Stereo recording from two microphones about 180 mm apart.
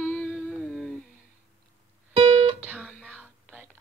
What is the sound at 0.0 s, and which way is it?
Music, 5° left (ahead or behind).